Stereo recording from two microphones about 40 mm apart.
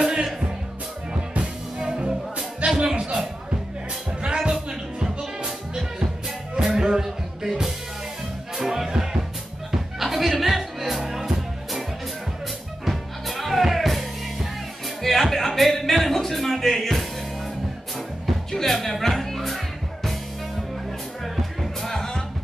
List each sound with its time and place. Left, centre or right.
0.0 s music: centre
1.4 s music: centre
4.4 s music: centre
6.6 s music: centre
12.8 s music: centre
21.4 s music: centre